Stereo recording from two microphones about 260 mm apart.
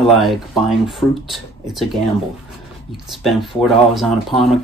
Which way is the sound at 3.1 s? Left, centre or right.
Centre.